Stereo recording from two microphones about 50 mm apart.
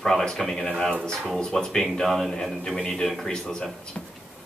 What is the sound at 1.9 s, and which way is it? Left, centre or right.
A man's voice, centre.